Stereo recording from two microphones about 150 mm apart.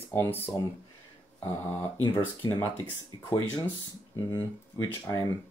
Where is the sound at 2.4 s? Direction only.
25° left (ahead or behind).